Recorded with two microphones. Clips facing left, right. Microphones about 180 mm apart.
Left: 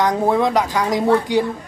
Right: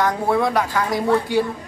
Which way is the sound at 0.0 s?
20° left (ahead or behind).